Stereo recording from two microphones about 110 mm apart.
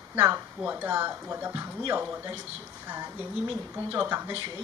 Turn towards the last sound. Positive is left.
turn(degrees=-20)  # may be behind; listen again after turning